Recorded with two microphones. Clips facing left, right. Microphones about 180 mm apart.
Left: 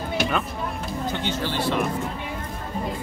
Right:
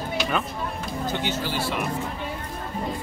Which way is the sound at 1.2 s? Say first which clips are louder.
Left 2 dB; 10° right (ahead or behind).